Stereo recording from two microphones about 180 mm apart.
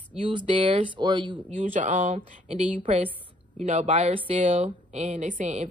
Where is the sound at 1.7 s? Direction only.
45° right (ahead or behind).